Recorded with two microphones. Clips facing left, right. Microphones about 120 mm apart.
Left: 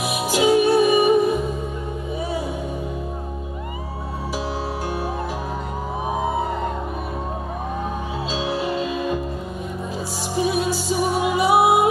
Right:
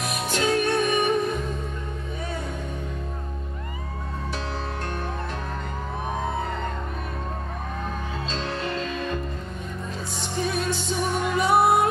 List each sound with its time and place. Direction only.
0.0 s music: 5° left (ahead or behind)
6.1 s music: 10° left (ahead or behind)
8.3 s music: 5° left (ahead or behind)
10.3 s music: 10° left (ahead or behind)